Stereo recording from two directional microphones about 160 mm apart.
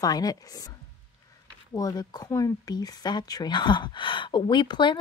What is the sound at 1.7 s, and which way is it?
Speech, 25° left (ahead or behind).